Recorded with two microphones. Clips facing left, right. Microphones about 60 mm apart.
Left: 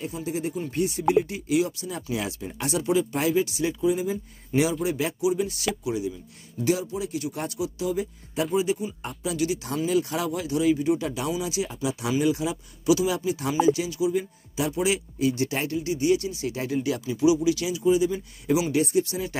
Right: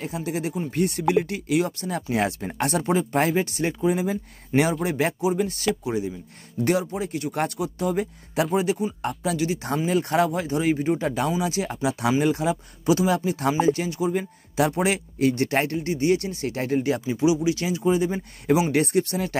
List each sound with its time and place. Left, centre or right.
0.0 s speech: right
6.6 s speech: right
9.4 s speech: right